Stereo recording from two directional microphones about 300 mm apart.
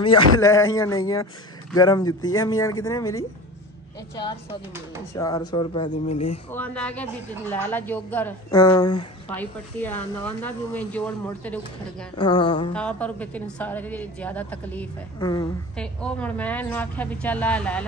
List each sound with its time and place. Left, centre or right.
0.0 s speech: centre
5.1 s speech: centre
6.5 s speech: centre
12.2 s speech: centre
12.7 s speech: centre